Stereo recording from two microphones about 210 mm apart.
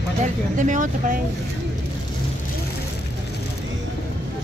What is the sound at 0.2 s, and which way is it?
Speech, 35° right (ahead or behind).